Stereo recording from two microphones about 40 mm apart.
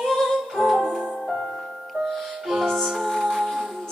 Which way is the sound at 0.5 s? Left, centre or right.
Centre.